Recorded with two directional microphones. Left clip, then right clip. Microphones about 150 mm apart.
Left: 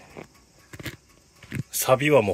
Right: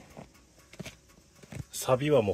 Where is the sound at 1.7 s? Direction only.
15° left (ahead or behind).